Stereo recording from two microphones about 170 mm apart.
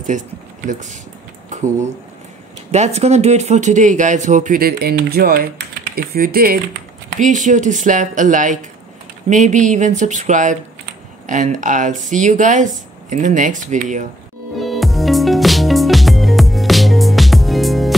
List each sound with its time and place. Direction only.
0.1 s speech: 45° right (ahead or behind)
1.5 s a sound: 45° right (ahead or behind)
2.7 s speech: 40° right (ahead or behind); by 6.6 s 60° right (ahead or behind)
7.2 s speech: 50° right (ahead or behind)
14.6 s music: centre (ahead or behind)